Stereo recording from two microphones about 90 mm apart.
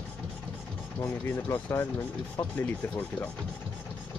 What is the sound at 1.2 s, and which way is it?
Speech, 25° left (ahead or behind).